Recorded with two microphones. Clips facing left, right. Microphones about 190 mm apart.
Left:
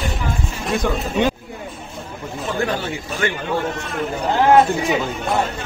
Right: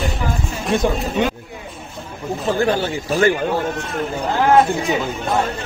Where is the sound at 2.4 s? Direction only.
30° right (ahead or behind).